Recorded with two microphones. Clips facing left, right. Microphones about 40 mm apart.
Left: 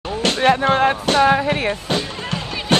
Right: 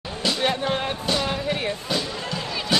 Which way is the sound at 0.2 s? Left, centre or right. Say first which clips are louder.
Left 7 dB; left.